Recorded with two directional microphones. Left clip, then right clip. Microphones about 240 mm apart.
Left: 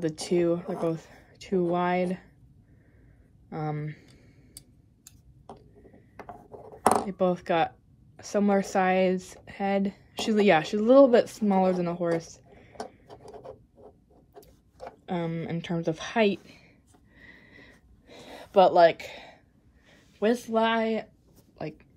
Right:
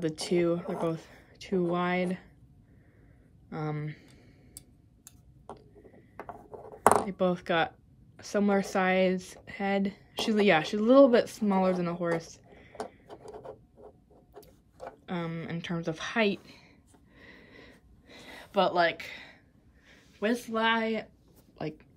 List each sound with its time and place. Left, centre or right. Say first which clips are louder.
0.0 s speech: left 2 dB; centre
3.4 s speech: left 2 dB; centre
7.1 s speech: left 3 dB; centre
15.0 s speech: left 5 dB; centre
17.2 s a sound: left 1 dB; right
18.0 s gasp: left 3 dB; centre
20.2 s speech: left 5 dB; centre